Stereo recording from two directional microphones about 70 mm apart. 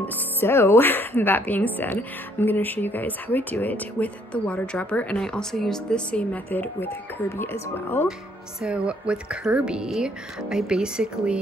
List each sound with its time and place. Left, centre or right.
0.0 s speech: left; by 6.4 s centre
6.5 s speech: left
7.2 s speech: left
8.5 s a woman's voice: centre